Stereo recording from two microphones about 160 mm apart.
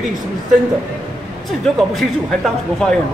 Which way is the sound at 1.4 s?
Centre (ahead or behind).